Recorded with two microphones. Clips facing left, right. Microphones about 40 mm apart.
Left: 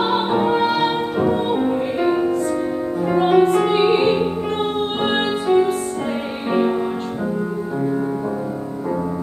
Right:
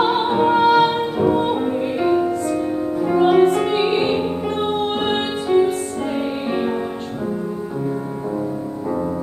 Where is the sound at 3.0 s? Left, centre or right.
Centre.